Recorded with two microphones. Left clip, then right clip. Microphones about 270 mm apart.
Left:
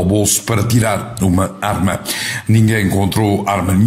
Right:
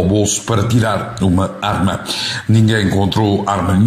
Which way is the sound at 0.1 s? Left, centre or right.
Left.